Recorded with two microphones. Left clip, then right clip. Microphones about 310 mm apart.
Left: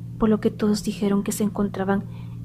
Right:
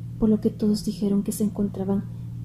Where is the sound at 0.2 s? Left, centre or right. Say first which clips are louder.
Left 2 dB; left.